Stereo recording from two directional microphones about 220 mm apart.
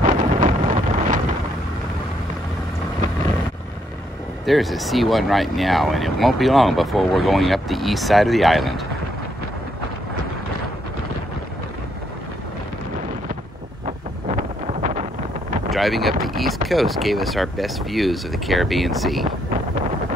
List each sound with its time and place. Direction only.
0.0 s wind noise: 35° right (ahead or behind)
4.5 s speech: centre (ahead or behind)
14.3 s wind noise: 30° right (ahead or behind)
15.7 s speech: centre (ahead or behind)